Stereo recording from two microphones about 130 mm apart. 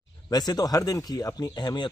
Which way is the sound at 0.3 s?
30° left (ahead or behind).